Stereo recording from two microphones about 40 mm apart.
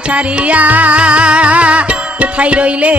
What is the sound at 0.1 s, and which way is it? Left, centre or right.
Music, right.